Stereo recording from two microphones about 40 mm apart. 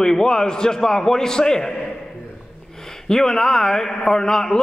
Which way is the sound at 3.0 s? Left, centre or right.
Centre.